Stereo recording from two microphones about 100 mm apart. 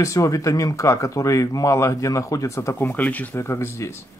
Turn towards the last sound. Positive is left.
turn(degrees=30)  # may be behind; listen again after turning